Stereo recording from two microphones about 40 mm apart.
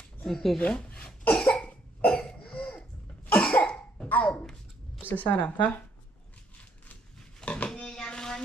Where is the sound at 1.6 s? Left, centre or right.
Left.